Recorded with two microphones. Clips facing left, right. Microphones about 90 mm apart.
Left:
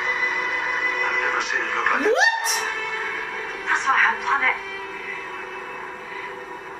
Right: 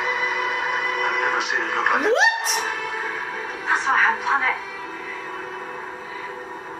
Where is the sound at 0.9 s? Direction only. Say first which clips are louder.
Right 2 dB; 5° right (ahead or behind).